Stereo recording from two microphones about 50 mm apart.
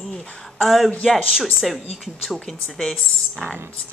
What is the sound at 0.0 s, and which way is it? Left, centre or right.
Speech, centre.